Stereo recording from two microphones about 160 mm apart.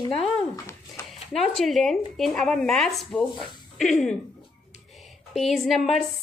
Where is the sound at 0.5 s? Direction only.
15° left (ahead or behind).